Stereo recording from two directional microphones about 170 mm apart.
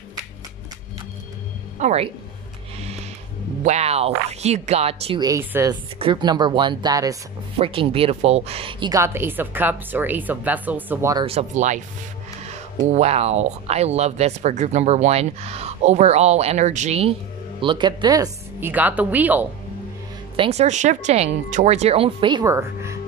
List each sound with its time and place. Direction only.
1.8 s speech: 40° right (ahead or behind)
3.6 s speech: 40° right (ahead or behind)
5.2 s speech: 15° right (ahead or behind)
5.9 s speech: 30° right (ahead or behind)
7.5 s speech: 30° right (ahead or behind)
11.2 s speech: 40° right (ahead or behind)
12.8 s speech: 40° right (ahead or behind)
17.6 s speech: 25° right (ahead or behind)
18.7 s speech: 10° right (ahead or behind)
20.3 s speech: 35° right (ahead or behind); by 22.9 s 15° right (ahead or behind)